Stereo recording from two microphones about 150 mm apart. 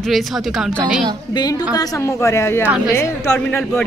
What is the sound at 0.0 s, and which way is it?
Speech, centre (ahead or behind).